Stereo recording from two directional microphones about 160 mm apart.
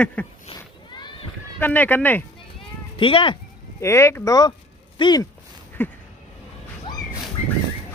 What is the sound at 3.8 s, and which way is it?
Speech, 15° left (ahead or behind).